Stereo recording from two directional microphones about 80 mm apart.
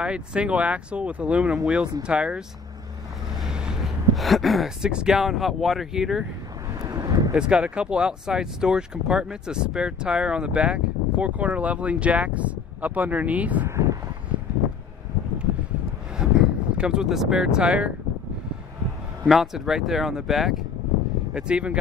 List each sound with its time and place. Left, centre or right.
0.0 s speech: centre
3.4 s speech: centre
6.7 s vehicle: right
7.3 s speech: centre
13.7 s vehicle: right
16.2 s speech: centre
19.2 s speech: centre